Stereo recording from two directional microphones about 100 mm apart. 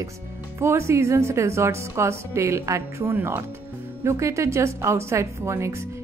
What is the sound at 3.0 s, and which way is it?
Speech, 15° right (ahead or behind).